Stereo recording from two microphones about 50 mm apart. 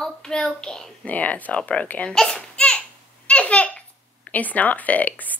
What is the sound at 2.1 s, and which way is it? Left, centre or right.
Speech, centre.